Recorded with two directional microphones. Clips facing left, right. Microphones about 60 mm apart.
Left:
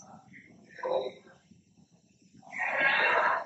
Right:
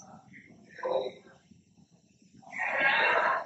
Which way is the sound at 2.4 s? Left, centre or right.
Centre.